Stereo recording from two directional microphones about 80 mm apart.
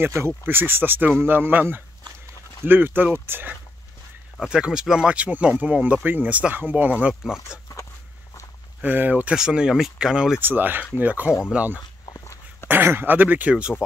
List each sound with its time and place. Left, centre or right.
0.0 s speech: right
4.4 s speech: centre
8.8 s speech: right
10.4 s speech: right